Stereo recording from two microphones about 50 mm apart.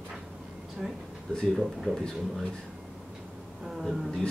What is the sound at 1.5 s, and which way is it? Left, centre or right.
Speech, centre.